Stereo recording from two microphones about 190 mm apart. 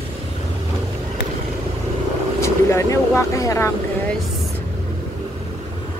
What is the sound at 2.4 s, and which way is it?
Speech, 15° left (ahead or behind).